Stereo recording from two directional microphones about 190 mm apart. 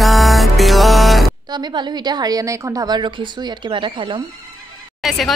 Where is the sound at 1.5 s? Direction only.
20° right (ahead or behind).